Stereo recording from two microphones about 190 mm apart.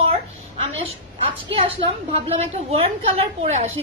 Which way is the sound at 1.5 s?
30° right (ahead or behind).